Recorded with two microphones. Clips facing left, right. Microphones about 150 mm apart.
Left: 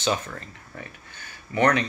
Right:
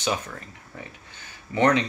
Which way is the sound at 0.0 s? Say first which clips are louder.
Left 2 dB; 10° right (ahead or behind).